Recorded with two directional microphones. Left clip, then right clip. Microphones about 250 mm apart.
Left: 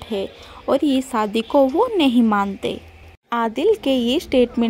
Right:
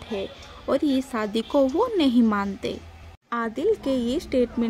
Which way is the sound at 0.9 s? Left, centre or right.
Centre.